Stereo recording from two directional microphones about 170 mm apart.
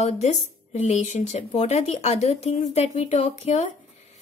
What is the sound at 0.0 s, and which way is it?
A woman's voice, 40° left (ahead or behind).